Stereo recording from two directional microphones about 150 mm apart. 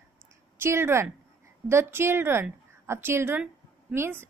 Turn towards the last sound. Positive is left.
turn(degrees=-15)  # may be behind; listen again after turning